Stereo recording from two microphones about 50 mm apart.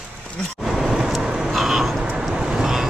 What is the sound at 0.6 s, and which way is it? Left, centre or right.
Vehicle, centre.